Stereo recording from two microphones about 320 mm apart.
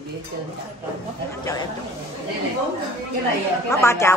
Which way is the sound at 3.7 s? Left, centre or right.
Centre.